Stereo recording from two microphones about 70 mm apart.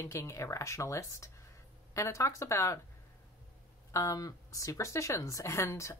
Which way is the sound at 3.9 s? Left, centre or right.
Left.